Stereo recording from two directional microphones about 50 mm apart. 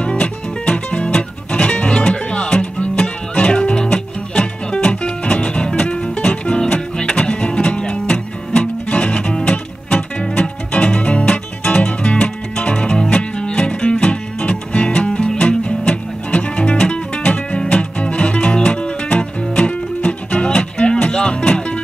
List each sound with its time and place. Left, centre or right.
0.0 s music: left